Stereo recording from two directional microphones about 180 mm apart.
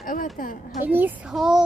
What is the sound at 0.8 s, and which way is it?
Speech, 10° right (ahead or behind).